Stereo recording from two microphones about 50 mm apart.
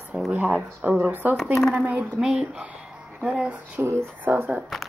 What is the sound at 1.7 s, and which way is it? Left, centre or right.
Speech, right.